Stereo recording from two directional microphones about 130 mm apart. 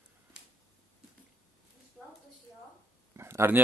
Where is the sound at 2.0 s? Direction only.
5° left (ahead or behind).